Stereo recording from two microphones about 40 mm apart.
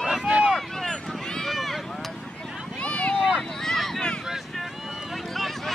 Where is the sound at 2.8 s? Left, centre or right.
Left.